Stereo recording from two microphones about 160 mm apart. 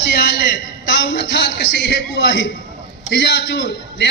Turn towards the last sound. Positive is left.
turn(degrees=90)